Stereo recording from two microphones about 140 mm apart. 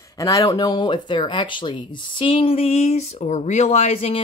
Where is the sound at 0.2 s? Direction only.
25° left (ahead or behind).